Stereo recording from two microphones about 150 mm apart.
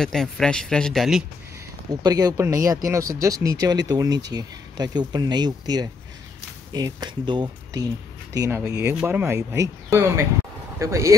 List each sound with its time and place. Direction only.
0.0 s speech: 5° left (ahead or behind)
1.9 s speech: 25° right (ahead or behind)
8.4 s speech: 20° right (ahead or behind)